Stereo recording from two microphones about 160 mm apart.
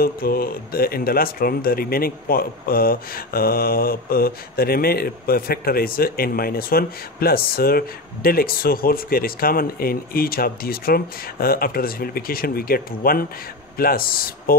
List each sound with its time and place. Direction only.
0.0 s speech: 70° left (ahead or behind)